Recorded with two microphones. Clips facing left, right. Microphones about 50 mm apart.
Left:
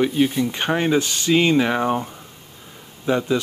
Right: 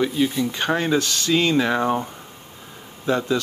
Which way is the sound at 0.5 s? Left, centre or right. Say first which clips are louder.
Left 2 dB; left.